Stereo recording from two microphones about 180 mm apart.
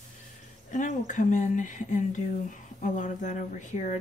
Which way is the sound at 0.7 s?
45° left (ahead or behind).